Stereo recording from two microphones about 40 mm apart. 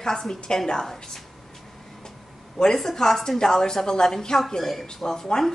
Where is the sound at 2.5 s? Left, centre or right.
Centre.